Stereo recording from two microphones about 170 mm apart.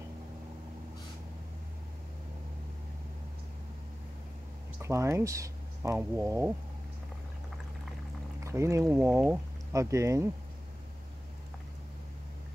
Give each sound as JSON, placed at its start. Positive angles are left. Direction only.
{"t": 4.8, "sound": "speech", "side_deg": -15}
{"t": 8.5, "sound": "speech", "side_deg": -15}